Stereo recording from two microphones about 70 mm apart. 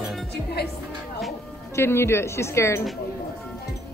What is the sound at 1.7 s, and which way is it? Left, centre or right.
Speech, left.